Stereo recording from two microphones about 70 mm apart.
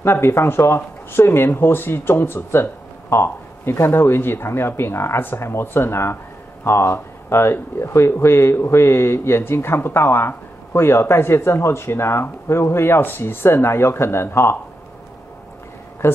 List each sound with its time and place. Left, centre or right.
0.0 s speech: left